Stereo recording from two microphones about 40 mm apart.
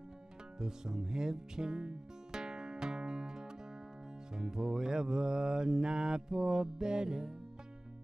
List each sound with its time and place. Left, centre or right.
0.6 s music: centre